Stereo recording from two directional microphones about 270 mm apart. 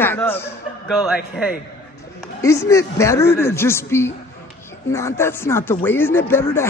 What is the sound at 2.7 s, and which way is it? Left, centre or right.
Speech, centre.